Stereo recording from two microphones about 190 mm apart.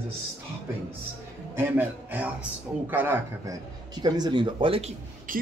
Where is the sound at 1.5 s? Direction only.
10° right (ahead or behind); by 4.9 s 30° right (ahead or behind).